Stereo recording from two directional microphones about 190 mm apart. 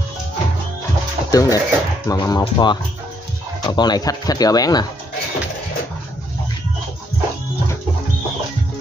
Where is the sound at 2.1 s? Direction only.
20° left (ahead or behind).